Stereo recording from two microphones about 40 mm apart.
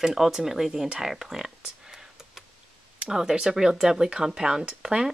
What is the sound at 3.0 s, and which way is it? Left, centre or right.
Speech, centre.